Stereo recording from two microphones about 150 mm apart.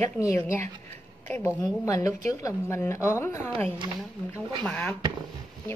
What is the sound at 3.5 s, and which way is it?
Speech, 40° right (ahead or behind).